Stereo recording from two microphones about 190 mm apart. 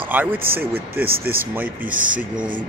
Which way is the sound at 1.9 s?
45° right (ahead or behind).